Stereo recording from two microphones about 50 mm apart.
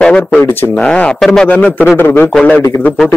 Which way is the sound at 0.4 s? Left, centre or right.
Left.